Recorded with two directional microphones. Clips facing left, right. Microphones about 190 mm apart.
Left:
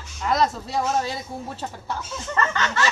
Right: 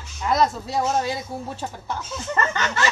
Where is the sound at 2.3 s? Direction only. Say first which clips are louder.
Even; 15° right (ahead or behind).